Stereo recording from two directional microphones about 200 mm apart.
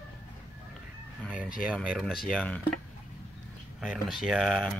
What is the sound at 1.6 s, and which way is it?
Speech, 5° right (ahead or behind).